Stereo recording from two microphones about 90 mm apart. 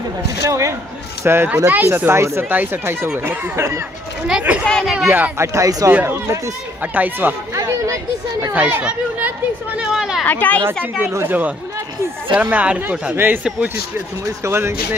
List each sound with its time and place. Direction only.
0.4 s speech: 35° right (ahead or behind)
4.3 s speech: 15° right (ahead or behind)
4.6 s speech: 5° left (ahead or behind)
5.4 s speech: 35° right (ahead or behind)
5.9 s speech: 25° right (ahead or behind)
8.5 s speech: 15° right (ahead or behind)
9.8 s speech: 5° right (ahead or behind)
10.2 s speech: 20° left (ahead or behind)
10.7 s speech: 25° right (ahead or behind)